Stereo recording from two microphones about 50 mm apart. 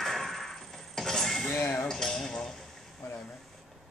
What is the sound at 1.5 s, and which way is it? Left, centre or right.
Dishes, left.